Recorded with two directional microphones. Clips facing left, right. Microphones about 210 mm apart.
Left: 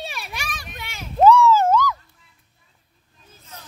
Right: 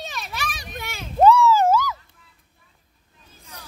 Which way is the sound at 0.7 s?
40° right (ahead or behind).